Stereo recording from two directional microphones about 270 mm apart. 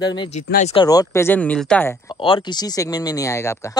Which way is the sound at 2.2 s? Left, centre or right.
Centre.